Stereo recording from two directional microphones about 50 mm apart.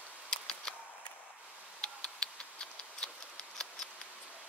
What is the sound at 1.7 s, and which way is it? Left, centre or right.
Tick-tock, centre.